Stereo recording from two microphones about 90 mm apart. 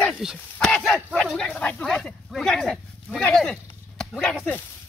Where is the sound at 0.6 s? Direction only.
5° left (ahead or behind).